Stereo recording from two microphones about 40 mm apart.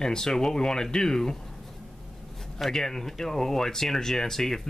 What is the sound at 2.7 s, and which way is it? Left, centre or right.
Speech, centre.